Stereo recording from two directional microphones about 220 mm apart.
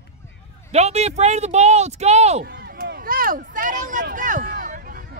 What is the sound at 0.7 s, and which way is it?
Speech, 30° right (ahead or behind).